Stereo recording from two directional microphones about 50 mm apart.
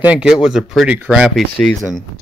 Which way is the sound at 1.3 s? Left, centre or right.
Centre.